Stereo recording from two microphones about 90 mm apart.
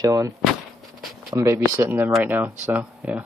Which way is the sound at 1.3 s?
35° right (ahead or behind).